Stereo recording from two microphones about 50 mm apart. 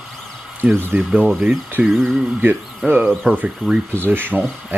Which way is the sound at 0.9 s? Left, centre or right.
Right.